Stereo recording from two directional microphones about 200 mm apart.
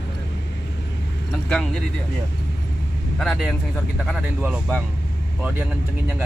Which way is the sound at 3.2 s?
Centre (ahead or behind).